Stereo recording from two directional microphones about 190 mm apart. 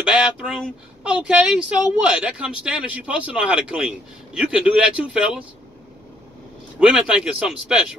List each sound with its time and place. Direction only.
0.0 s a sound: 5° right (ahead or behind)
1.0 s a man's voice: 5° right (ahead or behind)
6.8 s a man's voice: 5° right (ahead or behind)